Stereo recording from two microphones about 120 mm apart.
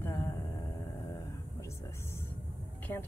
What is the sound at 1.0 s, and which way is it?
Whispering, 25° left (ahead or behind).